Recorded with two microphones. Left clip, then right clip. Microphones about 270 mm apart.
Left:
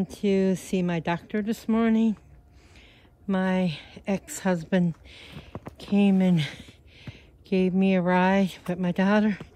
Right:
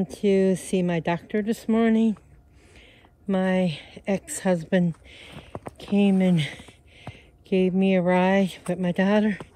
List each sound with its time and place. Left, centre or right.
0.0 s speech: left
3.3 s speech: centre
5.5 s a sound: centre
5.8 s speech: left